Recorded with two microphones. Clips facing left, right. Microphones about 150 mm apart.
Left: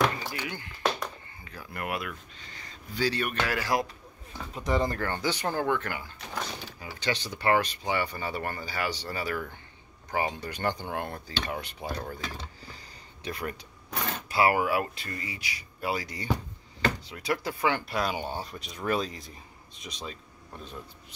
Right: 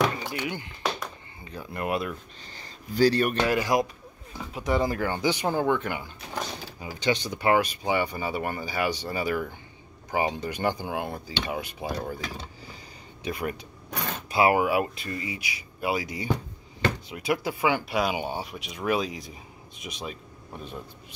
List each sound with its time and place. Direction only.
0.2 s speech: 25° right (ahead or behind); by 3.3 s 40° right (ahead or behind)
3.3 s speech: 20° right (ahead or behind)
4.4 s speech: 5° right (ahead or behind)